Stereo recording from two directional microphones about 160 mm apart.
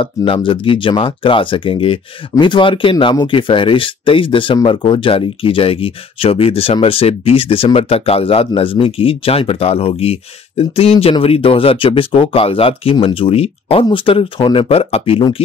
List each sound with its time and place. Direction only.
0.0 s speech: 30° left (ahead or behind)